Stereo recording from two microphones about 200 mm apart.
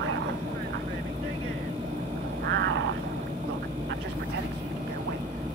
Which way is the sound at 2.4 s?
55° right (ahead or behind).